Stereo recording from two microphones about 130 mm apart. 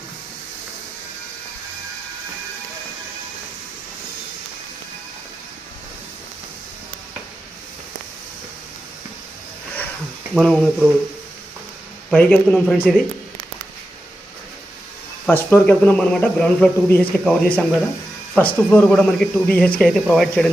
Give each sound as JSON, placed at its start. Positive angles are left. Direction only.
{"t": 10.3, "sound": "speech", "side_deg": 5}
{"t": 12.1, "sound": "speech", "side_deg": 10}
{"t": 15.2, "sound": "speech", "side_deg": 15}
{"t": 18.7, "sound": "speech", "side_deg": 10}